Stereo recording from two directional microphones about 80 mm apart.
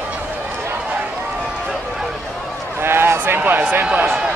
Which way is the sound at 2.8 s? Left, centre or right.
Right.